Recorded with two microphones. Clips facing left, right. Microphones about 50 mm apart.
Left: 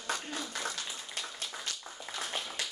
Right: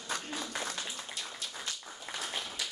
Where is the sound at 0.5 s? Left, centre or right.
Right.